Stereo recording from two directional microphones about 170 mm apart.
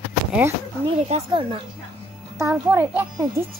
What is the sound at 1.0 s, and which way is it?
Speech, 35° right (ahead or behind).